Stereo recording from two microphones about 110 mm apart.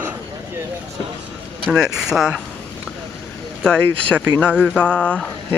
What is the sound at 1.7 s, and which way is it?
Speech, 5° right (ahead or behind).